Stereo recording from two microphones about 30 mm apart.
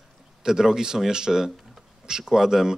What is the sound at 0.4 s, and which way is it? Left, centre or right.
A man's voice, centre.